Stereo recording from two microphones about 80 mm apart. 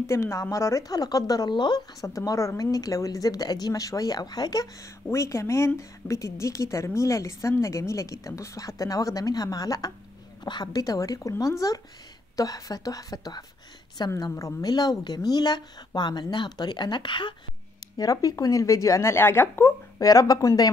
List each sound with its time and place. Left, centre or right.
0.0 s speech: left
1.5 s speech: left
2.0 s speech: left
5.1 s a woman's voice: left
10.4 s speech: left
14.0 s speech: left
14.3 s speech: left
17.9 s a woman's voice: left
20.0 s speech: left